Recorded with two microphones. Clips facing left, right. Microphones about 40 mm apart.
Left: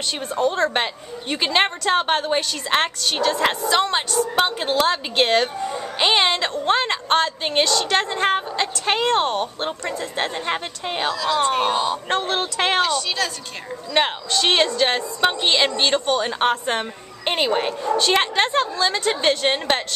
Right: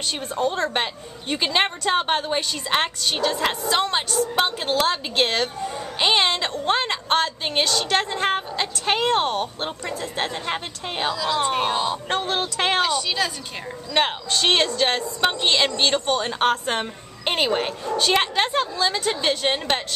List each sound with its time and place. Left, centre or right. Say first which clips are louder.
0.2 s a woman's voice: left 4 dB; centre
5.1 s a woman's voice: left 3 dB; centre
13.9 s a woman's voice: left 1 dB; centre